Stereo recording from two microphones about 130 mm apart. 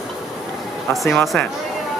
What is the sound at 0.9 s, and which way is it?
Speech, centre (ahead or behind).